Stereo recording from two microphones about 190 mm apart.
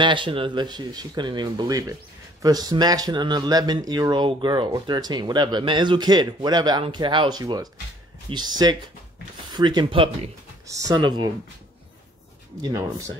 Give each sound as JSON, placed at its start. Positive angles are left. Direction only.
{"t": 0.0, "sound": "speech", "side_deg": -25}
{"t": 12.6, "sound": "speech", "side_deg": -15}